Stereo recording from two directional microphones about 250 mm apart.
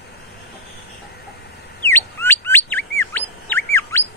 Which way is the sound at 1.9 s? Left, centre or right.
Centre.